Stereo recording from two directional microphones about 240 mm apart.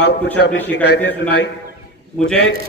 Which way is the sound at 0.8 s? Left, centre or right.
Left.